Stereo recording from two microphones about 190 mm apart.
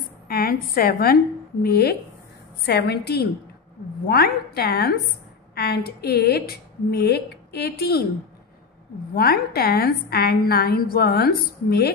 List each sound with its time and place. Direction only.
0.3 s a woman's voice: 50° left (ahead or behind)
9.1 s a woman's voice: 50° left (ahead or behind)